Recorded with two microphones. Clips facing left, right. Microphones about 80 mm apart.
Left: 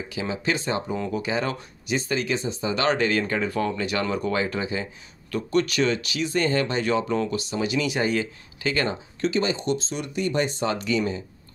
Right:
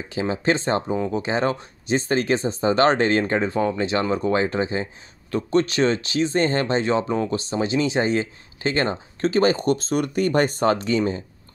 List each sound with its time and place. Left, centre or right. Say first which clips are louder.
0.1 s speech: right 6 dB; right